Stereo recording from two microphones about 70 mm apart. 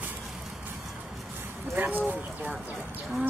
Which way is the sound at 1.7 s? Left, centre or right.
Right.